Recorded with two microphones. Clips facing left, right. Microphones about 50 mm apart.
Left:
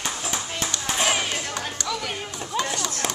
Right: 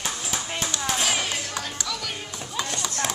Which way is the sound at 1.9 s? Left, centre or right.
Centre.